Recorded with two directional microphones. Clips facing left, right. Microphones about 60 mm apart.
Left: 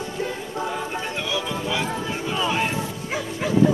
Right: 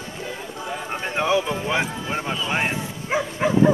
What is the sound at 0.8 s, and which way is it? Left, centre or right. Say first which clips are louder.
Clip-clop: right 4 dB; right.